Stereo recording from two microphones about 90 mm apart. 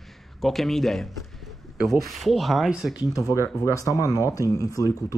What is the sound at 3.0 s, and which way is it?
Speech, 40° left (ahead or behind).